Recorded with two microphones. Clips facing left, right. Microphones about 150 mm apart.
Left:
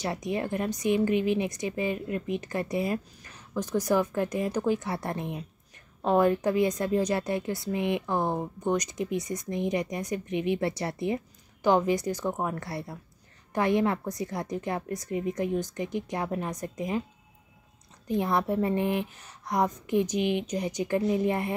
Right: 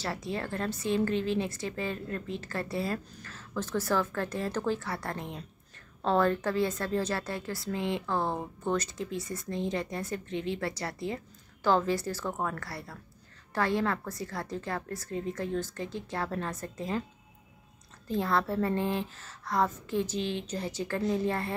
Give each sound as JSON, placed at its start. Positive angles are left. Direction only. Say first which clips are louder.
{"t": 0.0, "sound": "a woman's voice", "louder": "left 4 dB", "side_deg": 20}
{"t": 18.0, "sound": "a woman's voice", "louder": "left 2 dB", "side_deg": 20}